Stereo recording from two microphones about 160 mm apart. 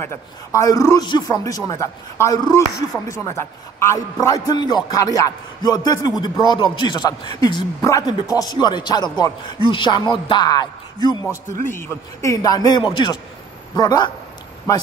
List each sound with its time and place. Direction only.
0.0 s a man's voice: 20° left (ahead or behind)
11.6 s a man's voice: 15° left (ahead or behind)